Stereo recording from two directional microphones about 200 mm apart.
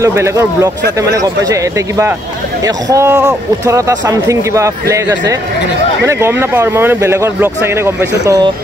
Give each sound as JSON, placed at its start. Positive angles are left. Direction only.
{"t": 0.0, "sound": "speech", "side_deg": -15}
{"t": 6.0, "sound": "speech", "side_deg": -10}